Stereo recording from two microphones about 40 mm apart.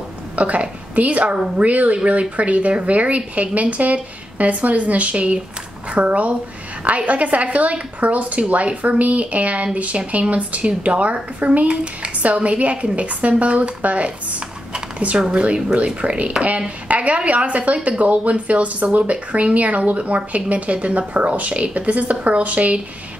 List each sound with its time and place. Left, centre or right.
0.4 s a woman's voice: right
14.7 s computer keyboard: right
15.1 s speech: centre; by 22.8 s right